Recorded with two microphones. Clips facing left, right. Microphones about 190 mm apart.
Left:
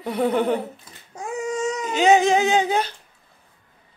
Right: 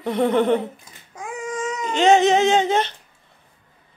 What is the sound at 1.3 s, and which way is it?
Baby cry, 40° left (ahead or behind).